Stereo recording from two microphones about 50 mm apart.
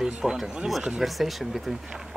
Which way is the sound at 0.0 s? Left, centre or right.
Centre.